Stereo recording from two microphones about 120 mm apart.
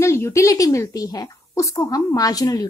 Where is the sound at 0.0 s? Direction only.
25° left (ahead or behind).